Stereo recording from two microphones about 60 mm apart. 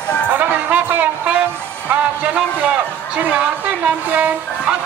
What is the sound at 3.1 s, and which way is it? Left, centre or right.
A man's voice, right.